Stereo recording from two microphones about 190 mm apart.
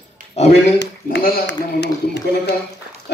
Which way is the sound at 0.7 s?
60° left (ahead or behind).